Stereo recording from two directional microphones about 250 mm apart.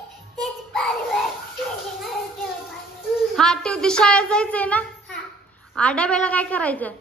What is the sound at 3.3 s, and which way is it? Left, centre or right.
A woman's voice, centre.